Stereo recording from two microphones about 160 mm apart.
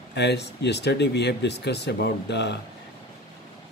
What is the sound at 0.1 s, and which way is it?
Speech, 90° left.